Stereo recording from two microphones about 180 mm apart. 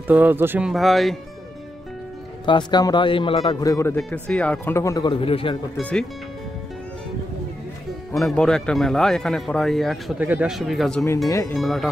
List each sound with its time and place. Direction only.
0.0 s speech: 10° right (ahead or behind)
2.4 s speech: 25° left (ahead or behind)
5.8 s speech: 10° left (ahead or behind)
8.2 s speech: 5° left (ahead or behind)